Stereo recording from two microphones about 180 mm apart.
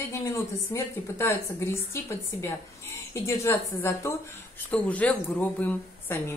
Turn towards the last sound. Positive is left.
turn(degrees=10)  # may be behind; listen again after turning